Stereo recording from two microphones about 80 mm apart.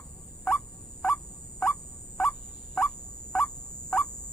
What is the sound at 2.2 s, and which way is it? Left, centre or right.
Fowl, centre.